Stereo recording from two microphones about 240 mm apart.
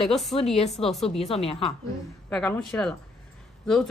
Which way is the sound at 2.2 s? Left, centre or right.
Centre.